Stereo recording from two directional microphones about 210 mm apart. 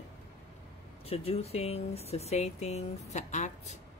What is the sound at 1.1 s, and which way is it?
Speech, 30° left (ahead or behind).